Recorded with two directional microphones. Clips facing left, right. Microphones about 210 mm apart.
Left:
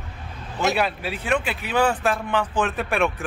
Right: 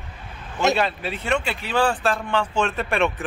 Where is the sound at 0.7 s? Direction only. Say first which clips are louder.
Right 1 dB; 10° left (ahead or behind).